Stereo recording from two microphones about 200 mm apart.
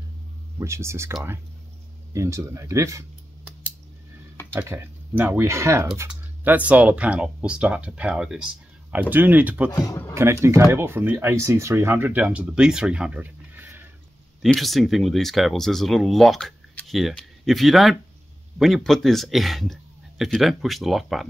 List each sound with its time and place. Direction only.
0.6 s speech: 15° right (ahead or behind)
2.1 s speech: 15° right (ahead or behind)
9.7 s a man's voice: 20° left (ahead or behind)
10.1 s speech: 15° right (ahead or behind)